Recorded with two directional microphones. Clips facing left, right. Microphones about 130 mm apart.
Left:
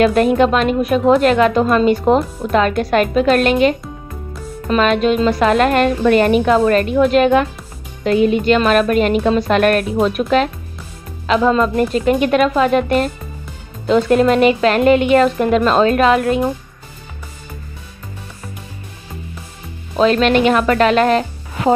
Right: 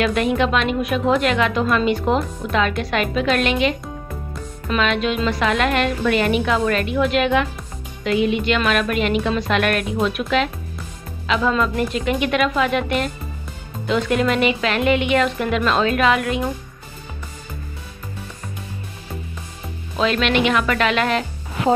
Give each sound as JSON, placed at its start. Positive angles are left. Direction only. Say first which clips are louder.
{"t": 0.0, "sound": "a woman's voice", "louder": "left 6 dB", "side_deg": 40}
{"t": 20.0, "sound": "a woman's voice", "louder": "left 6 dB", "side_deg": 40}